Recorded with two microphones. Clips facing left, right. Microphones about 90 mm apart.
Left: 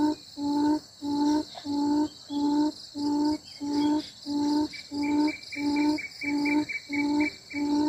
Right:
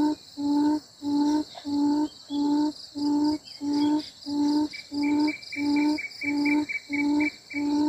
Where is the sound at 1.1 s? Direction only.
15° left (ahead or behind).